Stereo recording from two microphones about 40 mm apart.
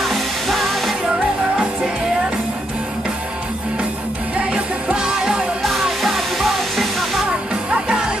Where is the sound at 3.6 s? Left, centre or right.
Right.